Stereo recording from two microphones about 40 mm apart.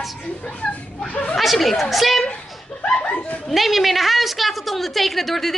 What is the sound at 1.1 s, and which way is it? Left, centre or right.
Speech, left.